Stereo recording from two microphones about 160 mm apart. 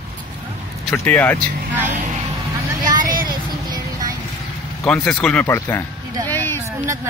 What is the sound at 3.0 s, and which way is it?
Vehicle, 60° right (ahead or behind).